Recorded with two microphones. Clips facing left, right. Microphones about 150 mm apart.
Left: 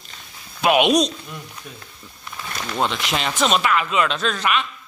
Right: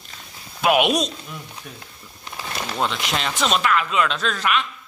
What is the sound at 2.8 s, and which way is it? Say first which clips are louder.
A man's voice: left 2 dB; centre (ahead or behind).